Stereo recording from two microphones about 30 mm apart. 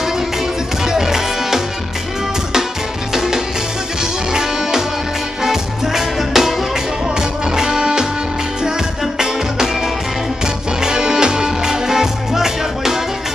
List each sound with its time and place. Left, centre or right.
0.8 s music: centre
3.1 s music: centre
7.2 s music: right
10.4 s music: right